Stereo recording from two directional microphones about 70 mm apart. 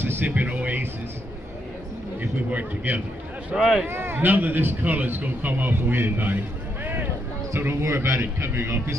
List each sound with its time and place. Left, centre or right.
0.0 s speech: right
2.5 s a man's voice: right
3.5 s speech: centre
3.8 s a man's voice: right